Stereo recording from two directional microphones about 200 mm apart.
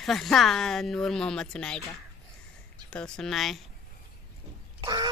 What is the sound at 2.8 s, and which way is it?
Speech, 5° left (ahead or behind).